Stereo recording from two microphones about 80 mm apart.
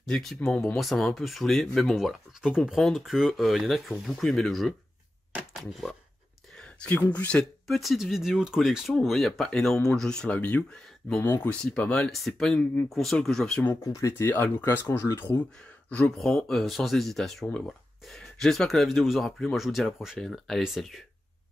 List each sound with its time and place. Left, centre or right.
0.0 s speech: centre
6.6 s a sound: centre
7.1 s speech: centre
7.6 s speech: centre
12.1 s speech: centre
13.7 s speech: left
14.3 s speech: left
15.9 s speech: centre